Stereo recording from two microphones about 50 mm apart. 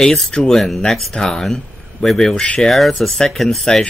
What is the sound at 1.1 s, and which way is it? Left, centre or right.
Speech, centre.